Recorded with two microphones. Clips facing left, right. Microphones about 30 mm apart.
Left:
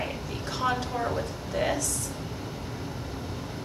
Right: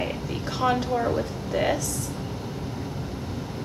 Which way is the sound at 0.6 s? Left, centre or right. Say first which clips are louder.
Right 5 dB; centre.